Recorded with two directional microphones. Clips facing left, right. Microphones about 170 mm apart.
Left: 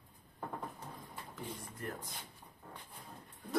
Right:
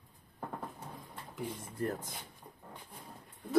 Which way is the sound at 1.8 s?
35° right (ahead or behind).